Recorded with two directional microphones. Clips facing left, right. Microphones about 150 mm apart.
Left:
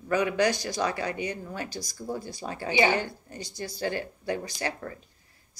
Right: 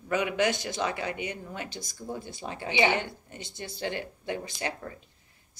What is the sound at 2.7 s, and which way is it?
A woman's voice, 20° right (ahead or behind).